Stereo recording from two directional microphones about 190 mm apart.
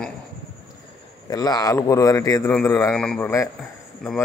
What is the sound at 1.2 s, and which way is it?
Speech, 20° left (ahead or behind).